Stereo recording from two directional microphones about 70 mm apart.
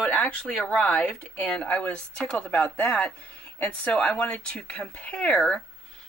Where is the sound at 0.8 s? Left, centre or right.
Left.